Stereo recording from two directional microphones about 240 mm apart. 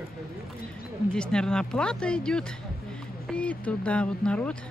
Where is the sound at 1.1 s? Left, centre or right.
Centre.